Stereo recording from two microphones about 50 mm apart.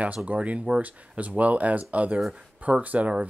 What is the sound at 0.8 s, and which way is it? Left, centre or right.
Speech, right.